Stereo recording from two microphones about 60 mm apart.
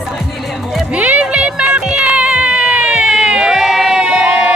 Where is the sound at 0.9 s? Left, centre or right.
Right; by 4.0 s centre.